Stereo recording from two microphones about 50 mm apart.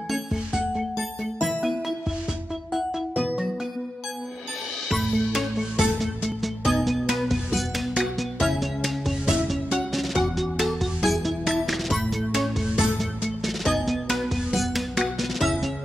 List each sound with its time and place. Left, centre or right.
0.1 s music: centre
4.8 s music: centre